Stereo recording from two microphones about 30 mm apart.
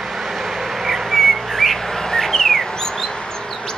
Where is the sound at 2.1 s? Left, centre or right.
Centre.